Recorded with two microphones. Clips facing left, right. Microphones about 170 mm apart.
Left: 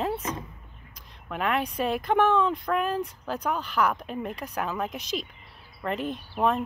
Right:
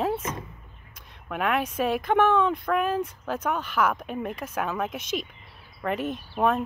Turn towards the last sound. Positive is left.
turn(degrees=-5)  # may be behind; listen again after turning